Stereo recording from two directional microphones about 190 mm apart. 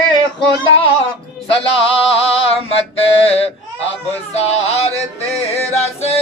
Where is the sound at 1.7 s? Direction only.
30° left (ahead or behind).